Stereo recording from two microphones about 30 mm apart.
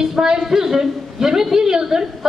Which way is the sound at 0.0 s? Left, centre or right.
Centre.